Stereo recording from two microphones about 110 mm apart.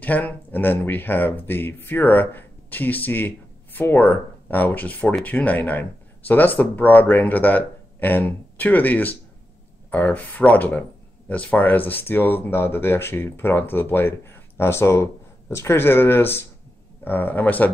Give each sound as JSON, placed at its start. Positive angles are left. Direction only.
{"t": 0.0, "sound": "speech", "side_deg": 15}